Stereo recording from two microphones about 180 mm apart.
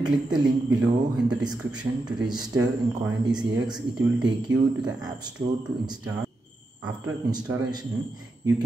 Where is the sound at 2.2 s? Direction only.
20° right (ahead or behind).